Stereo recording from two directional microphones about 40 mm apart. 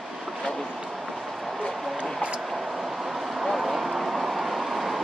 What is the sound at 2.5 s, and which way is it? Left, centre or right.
Vehicle, centre.